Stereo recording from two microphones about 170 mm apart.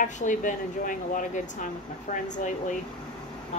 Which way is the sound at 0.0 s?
50° left (ahead or behind).